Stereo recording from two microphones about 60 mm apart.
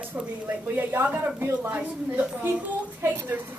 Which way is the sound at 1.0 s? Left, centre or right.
Right.